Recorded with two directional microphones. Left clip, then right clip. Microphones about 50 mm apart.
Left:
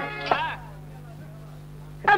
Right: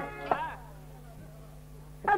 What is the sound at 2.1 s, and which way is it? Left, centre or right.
Dog, centre.